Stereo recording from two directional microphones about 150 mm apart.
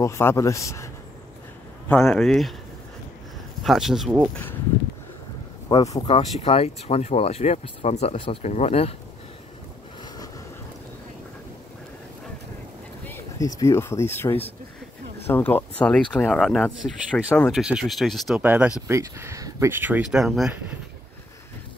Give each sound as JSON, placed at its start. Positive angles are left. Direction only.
{"t": 0.0, "sound": "speech", "side_deg": 15}
{"t": 1.9, "sound": "speech", "side_deg": 5}
{"t": 3.6, "sound": "speech", "side_deg": 0}
{"t": 5.7, "sound": "speech", "side_deg": 25}
{"t": 6.0, "sound": "speech", "side_deg": 40}
{"t": 13.0, "sound": "a sound", "side_deg": 15}
{"t": 13.5, "sound": "speech", "side_deg": 20}
{"t": 18.4, "sound": "speech", "side_deg": -10}